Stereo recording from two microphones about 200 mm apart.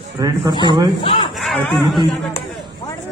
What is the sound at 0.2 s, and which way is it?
Speech, 15° right (ahead or behind).